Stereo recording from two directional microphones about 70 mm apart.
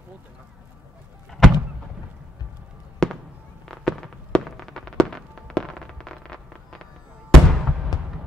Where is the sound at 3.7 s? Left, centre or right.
Centre.